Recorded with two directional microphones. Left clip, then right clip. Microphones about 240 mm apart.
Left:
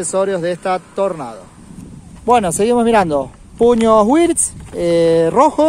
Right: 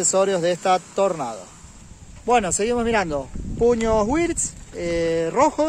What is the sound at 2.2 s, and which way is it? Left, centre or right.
Speech, left.